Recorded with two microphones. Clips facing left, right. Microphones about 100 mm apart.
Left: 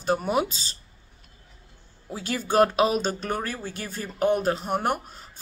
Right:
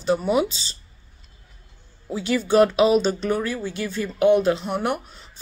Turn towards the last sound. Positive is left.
turn(degrees=45)  # may be behind; listen again after turning